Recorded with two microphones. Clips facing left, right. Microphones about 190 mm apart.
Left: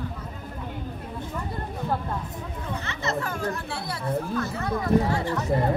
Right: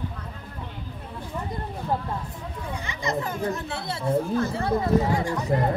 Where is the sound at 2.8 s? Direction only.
15° right (ahead or behind).